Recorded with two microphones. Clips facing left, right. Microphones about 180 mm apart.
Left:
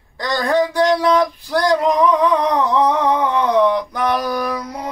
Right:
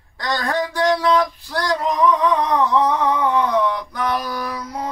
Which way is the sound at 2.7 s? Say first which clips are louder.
Left 2 dB; 20° left (ahead or behind).